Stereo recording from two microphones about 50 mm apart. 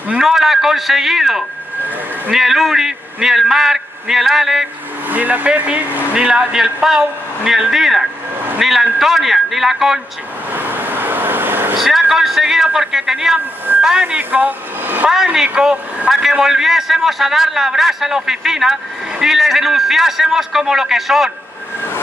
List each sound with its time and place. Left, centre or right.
0.2 s a man's voice: centre
5.0 s speech: right
6.1 s a man's voice: centre
10.5 s vehicle: right
11.8 s a man's voice: centre
14.3 s speech: right
15.0 s a man's voice: centre
16.1 s a man's voice: centre